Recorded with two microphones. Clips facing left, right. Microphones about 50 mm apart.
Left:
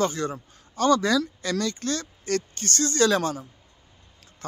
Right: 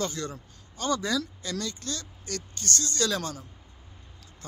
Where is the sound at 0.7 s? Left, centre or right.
Left.